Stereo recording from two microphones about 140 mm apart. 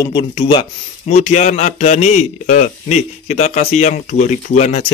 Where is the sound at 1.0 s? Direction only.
55° left (ahead or behind).